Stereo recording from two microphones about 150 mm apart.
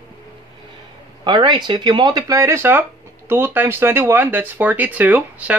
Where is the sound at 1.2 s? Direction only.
30° right (ahead or behind); by 5.6 s 10° right (ahead or behind).